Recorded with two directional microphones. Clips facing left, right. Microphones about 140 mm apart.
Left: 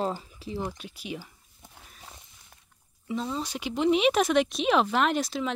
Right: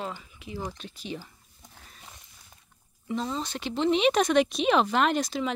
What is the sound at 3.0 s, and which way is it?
Speech, 5° left (ahead or behind).